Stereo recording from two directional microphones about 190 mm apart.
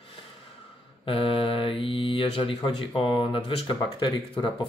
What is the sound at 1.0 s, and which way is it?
Speech, 30° left (ahead or behind).